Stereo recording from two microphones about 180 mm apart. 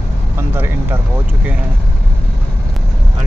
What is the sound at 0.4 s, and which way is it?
Speech, 10° right (ahead or behind).